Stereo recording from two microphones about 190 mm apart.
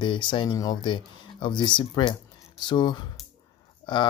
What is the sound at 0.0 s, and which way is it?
Speech, 25° left (ahead or behind).